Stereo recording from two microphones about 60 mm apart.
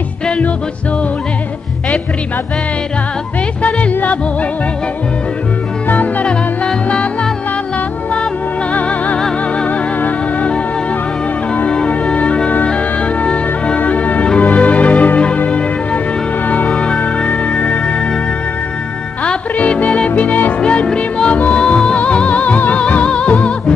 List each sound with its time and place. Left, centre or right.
3.6 s music: left
5.9 s music: left
6.2 s music: centre
8.7 s music: left
16.7 s music: centre
17.0 s music: left
19.2 s music: centre